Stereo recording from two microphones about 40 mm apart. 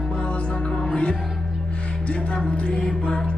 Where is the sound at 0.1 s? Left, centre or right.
Left.